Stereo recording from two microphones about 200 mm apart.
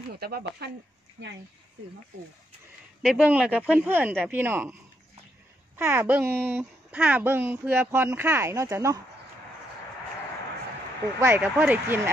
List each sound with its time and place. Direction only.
0.1 s speech: 50° right (ahead or behind)
3.0 s speech: 5° right (ahead or behind)
5.8 s speech: 10° right (ahead or behind)
11.1 s speech: 10° right (ahead or behind)